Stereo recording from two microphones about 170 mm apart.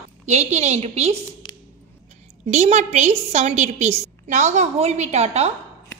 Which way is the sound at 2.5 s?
40° right (ahead or behind).